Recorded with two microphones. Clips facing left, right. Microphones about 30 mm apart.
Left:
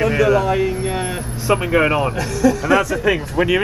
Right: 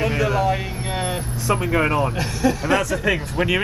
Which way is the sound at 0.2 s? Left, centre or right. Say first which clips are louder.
Left 7 dB; centre.